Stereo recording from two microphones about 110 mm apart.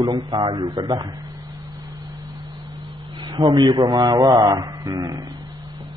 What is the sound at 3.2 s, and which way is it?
A man's voice, 40° right (ahead or behind).